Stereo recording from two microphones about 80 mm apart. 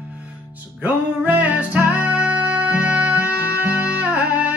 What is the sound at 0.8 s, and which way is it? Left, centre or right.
Music, right.